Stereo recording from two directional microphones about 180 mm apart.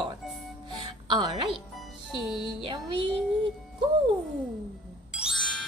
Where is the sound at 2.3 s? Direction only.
Centre (ahead or behind).